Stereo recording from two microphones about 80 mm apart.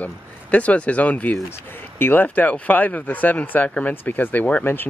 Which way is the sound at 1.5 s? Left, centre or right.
Left.